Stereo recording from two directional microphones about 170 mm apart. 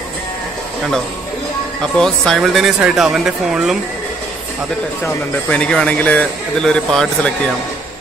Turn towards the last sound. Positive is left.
turn(degrees=5)  # may be behind; listen again after turning